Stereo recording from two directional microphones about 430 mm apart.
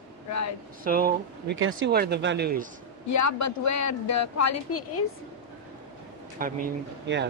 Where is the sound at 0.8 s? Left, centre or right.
Centre.